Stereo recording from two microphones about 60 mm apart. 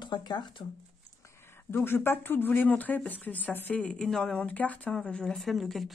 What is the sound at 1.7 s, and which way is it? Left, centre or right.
Speech, left.